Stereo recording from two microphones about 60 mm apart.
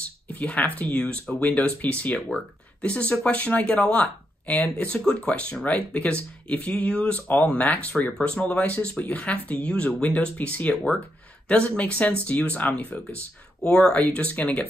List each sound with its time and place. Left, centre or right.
0.3 s speech: left
2.1 s speech: centre
2.8 s speech: centre
13.6 s speech: centre